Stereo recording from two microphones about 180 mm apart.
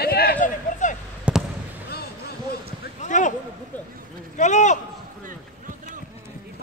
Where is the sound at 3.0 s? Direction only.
45° left (ahead or behind).